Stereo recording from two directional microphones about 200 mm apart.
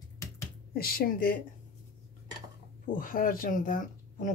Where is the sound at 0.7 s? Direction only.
50° left (ahead or behind).